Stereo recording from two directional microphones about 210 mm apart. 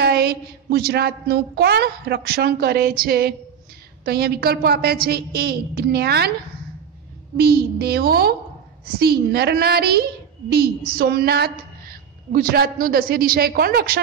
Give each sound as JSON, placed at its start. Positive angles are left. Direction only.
{"t": 0.0, "sound": "a woman's voice", "side_deg": -50}
{"t": 7.3, "sound": "a woman's voice", "side_deg": -45}